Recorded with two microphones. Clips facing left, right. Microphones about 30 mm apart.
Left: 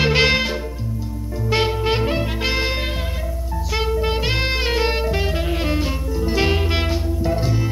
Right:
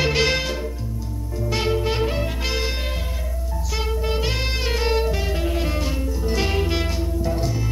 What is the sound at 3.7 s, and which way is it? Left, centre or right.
Saxophone, left.